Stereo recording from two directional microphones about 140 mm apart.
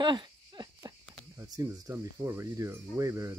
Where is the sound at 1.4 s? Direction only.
20° right (ahead or behind).